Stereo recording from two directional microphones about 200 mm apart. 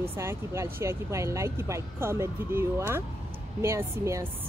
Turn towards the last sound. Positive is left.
turn(degrees=-15)  # may be behind; listen again after turning